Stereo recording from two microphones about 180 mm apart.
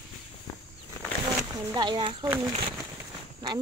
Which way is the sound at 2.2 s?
10° right (ahead or behind).